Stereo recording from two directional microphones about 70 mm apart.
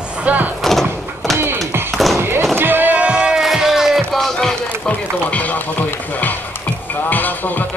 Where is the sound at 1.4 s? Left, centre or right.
Right.